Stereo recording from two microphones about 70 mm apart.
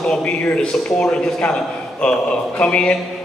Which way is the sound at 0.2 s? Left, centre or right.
Left.